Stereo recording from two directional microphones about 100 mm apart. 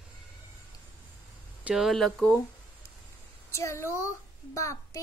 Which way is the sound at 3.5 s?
30° left (ahead or behind).